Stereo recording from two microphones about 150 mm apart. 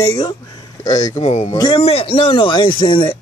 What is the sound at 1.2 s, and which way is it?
Speech, 45° left (ahead or behind).